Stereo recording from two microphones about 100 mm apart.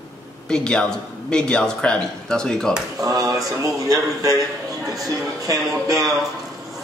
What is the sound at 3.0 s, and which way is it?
A man's voice, 40° right (ahead or behind).